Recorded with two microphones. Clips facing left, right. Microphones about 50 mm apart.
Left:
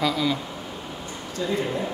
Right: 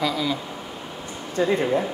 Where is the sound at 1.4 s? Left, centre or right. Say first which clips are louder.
Right 6 dB; right.